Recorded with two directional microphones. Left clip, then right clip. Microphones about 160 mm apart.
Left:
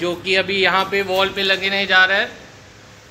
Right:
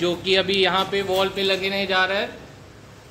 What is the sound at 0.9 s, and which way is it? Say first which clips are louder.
Speech: left 3 dB; 5° left (ahead or behind).